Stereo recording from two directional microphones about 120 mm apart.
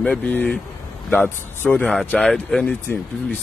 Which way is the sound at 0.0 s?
10° left (ahead or behind).